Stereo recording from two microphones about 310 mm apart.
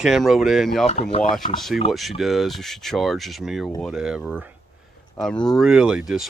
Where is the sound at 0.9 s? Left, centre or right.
Left.